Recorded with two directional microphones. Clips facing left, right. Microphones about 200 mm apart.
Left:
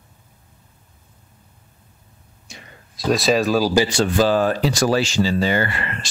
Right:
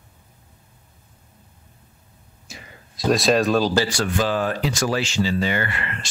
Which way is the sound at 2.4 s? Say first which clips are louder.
Right 1 dB; centre (ahead or behind).